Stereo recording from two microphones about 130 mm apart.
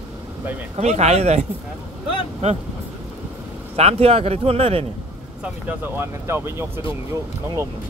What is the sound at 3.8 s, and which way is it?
Speech, 50° right (ahead or behind).